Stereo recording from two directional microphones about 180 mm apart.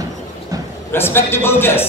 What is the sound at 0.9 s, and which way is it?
A man's voice, 10° left (ahead or behind).